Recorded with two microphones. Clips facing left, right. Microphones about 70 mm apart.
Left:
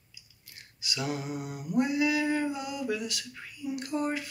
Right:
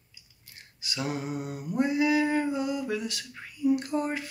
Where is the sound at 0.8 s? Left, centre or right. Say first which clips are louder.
Right 1 dB; right.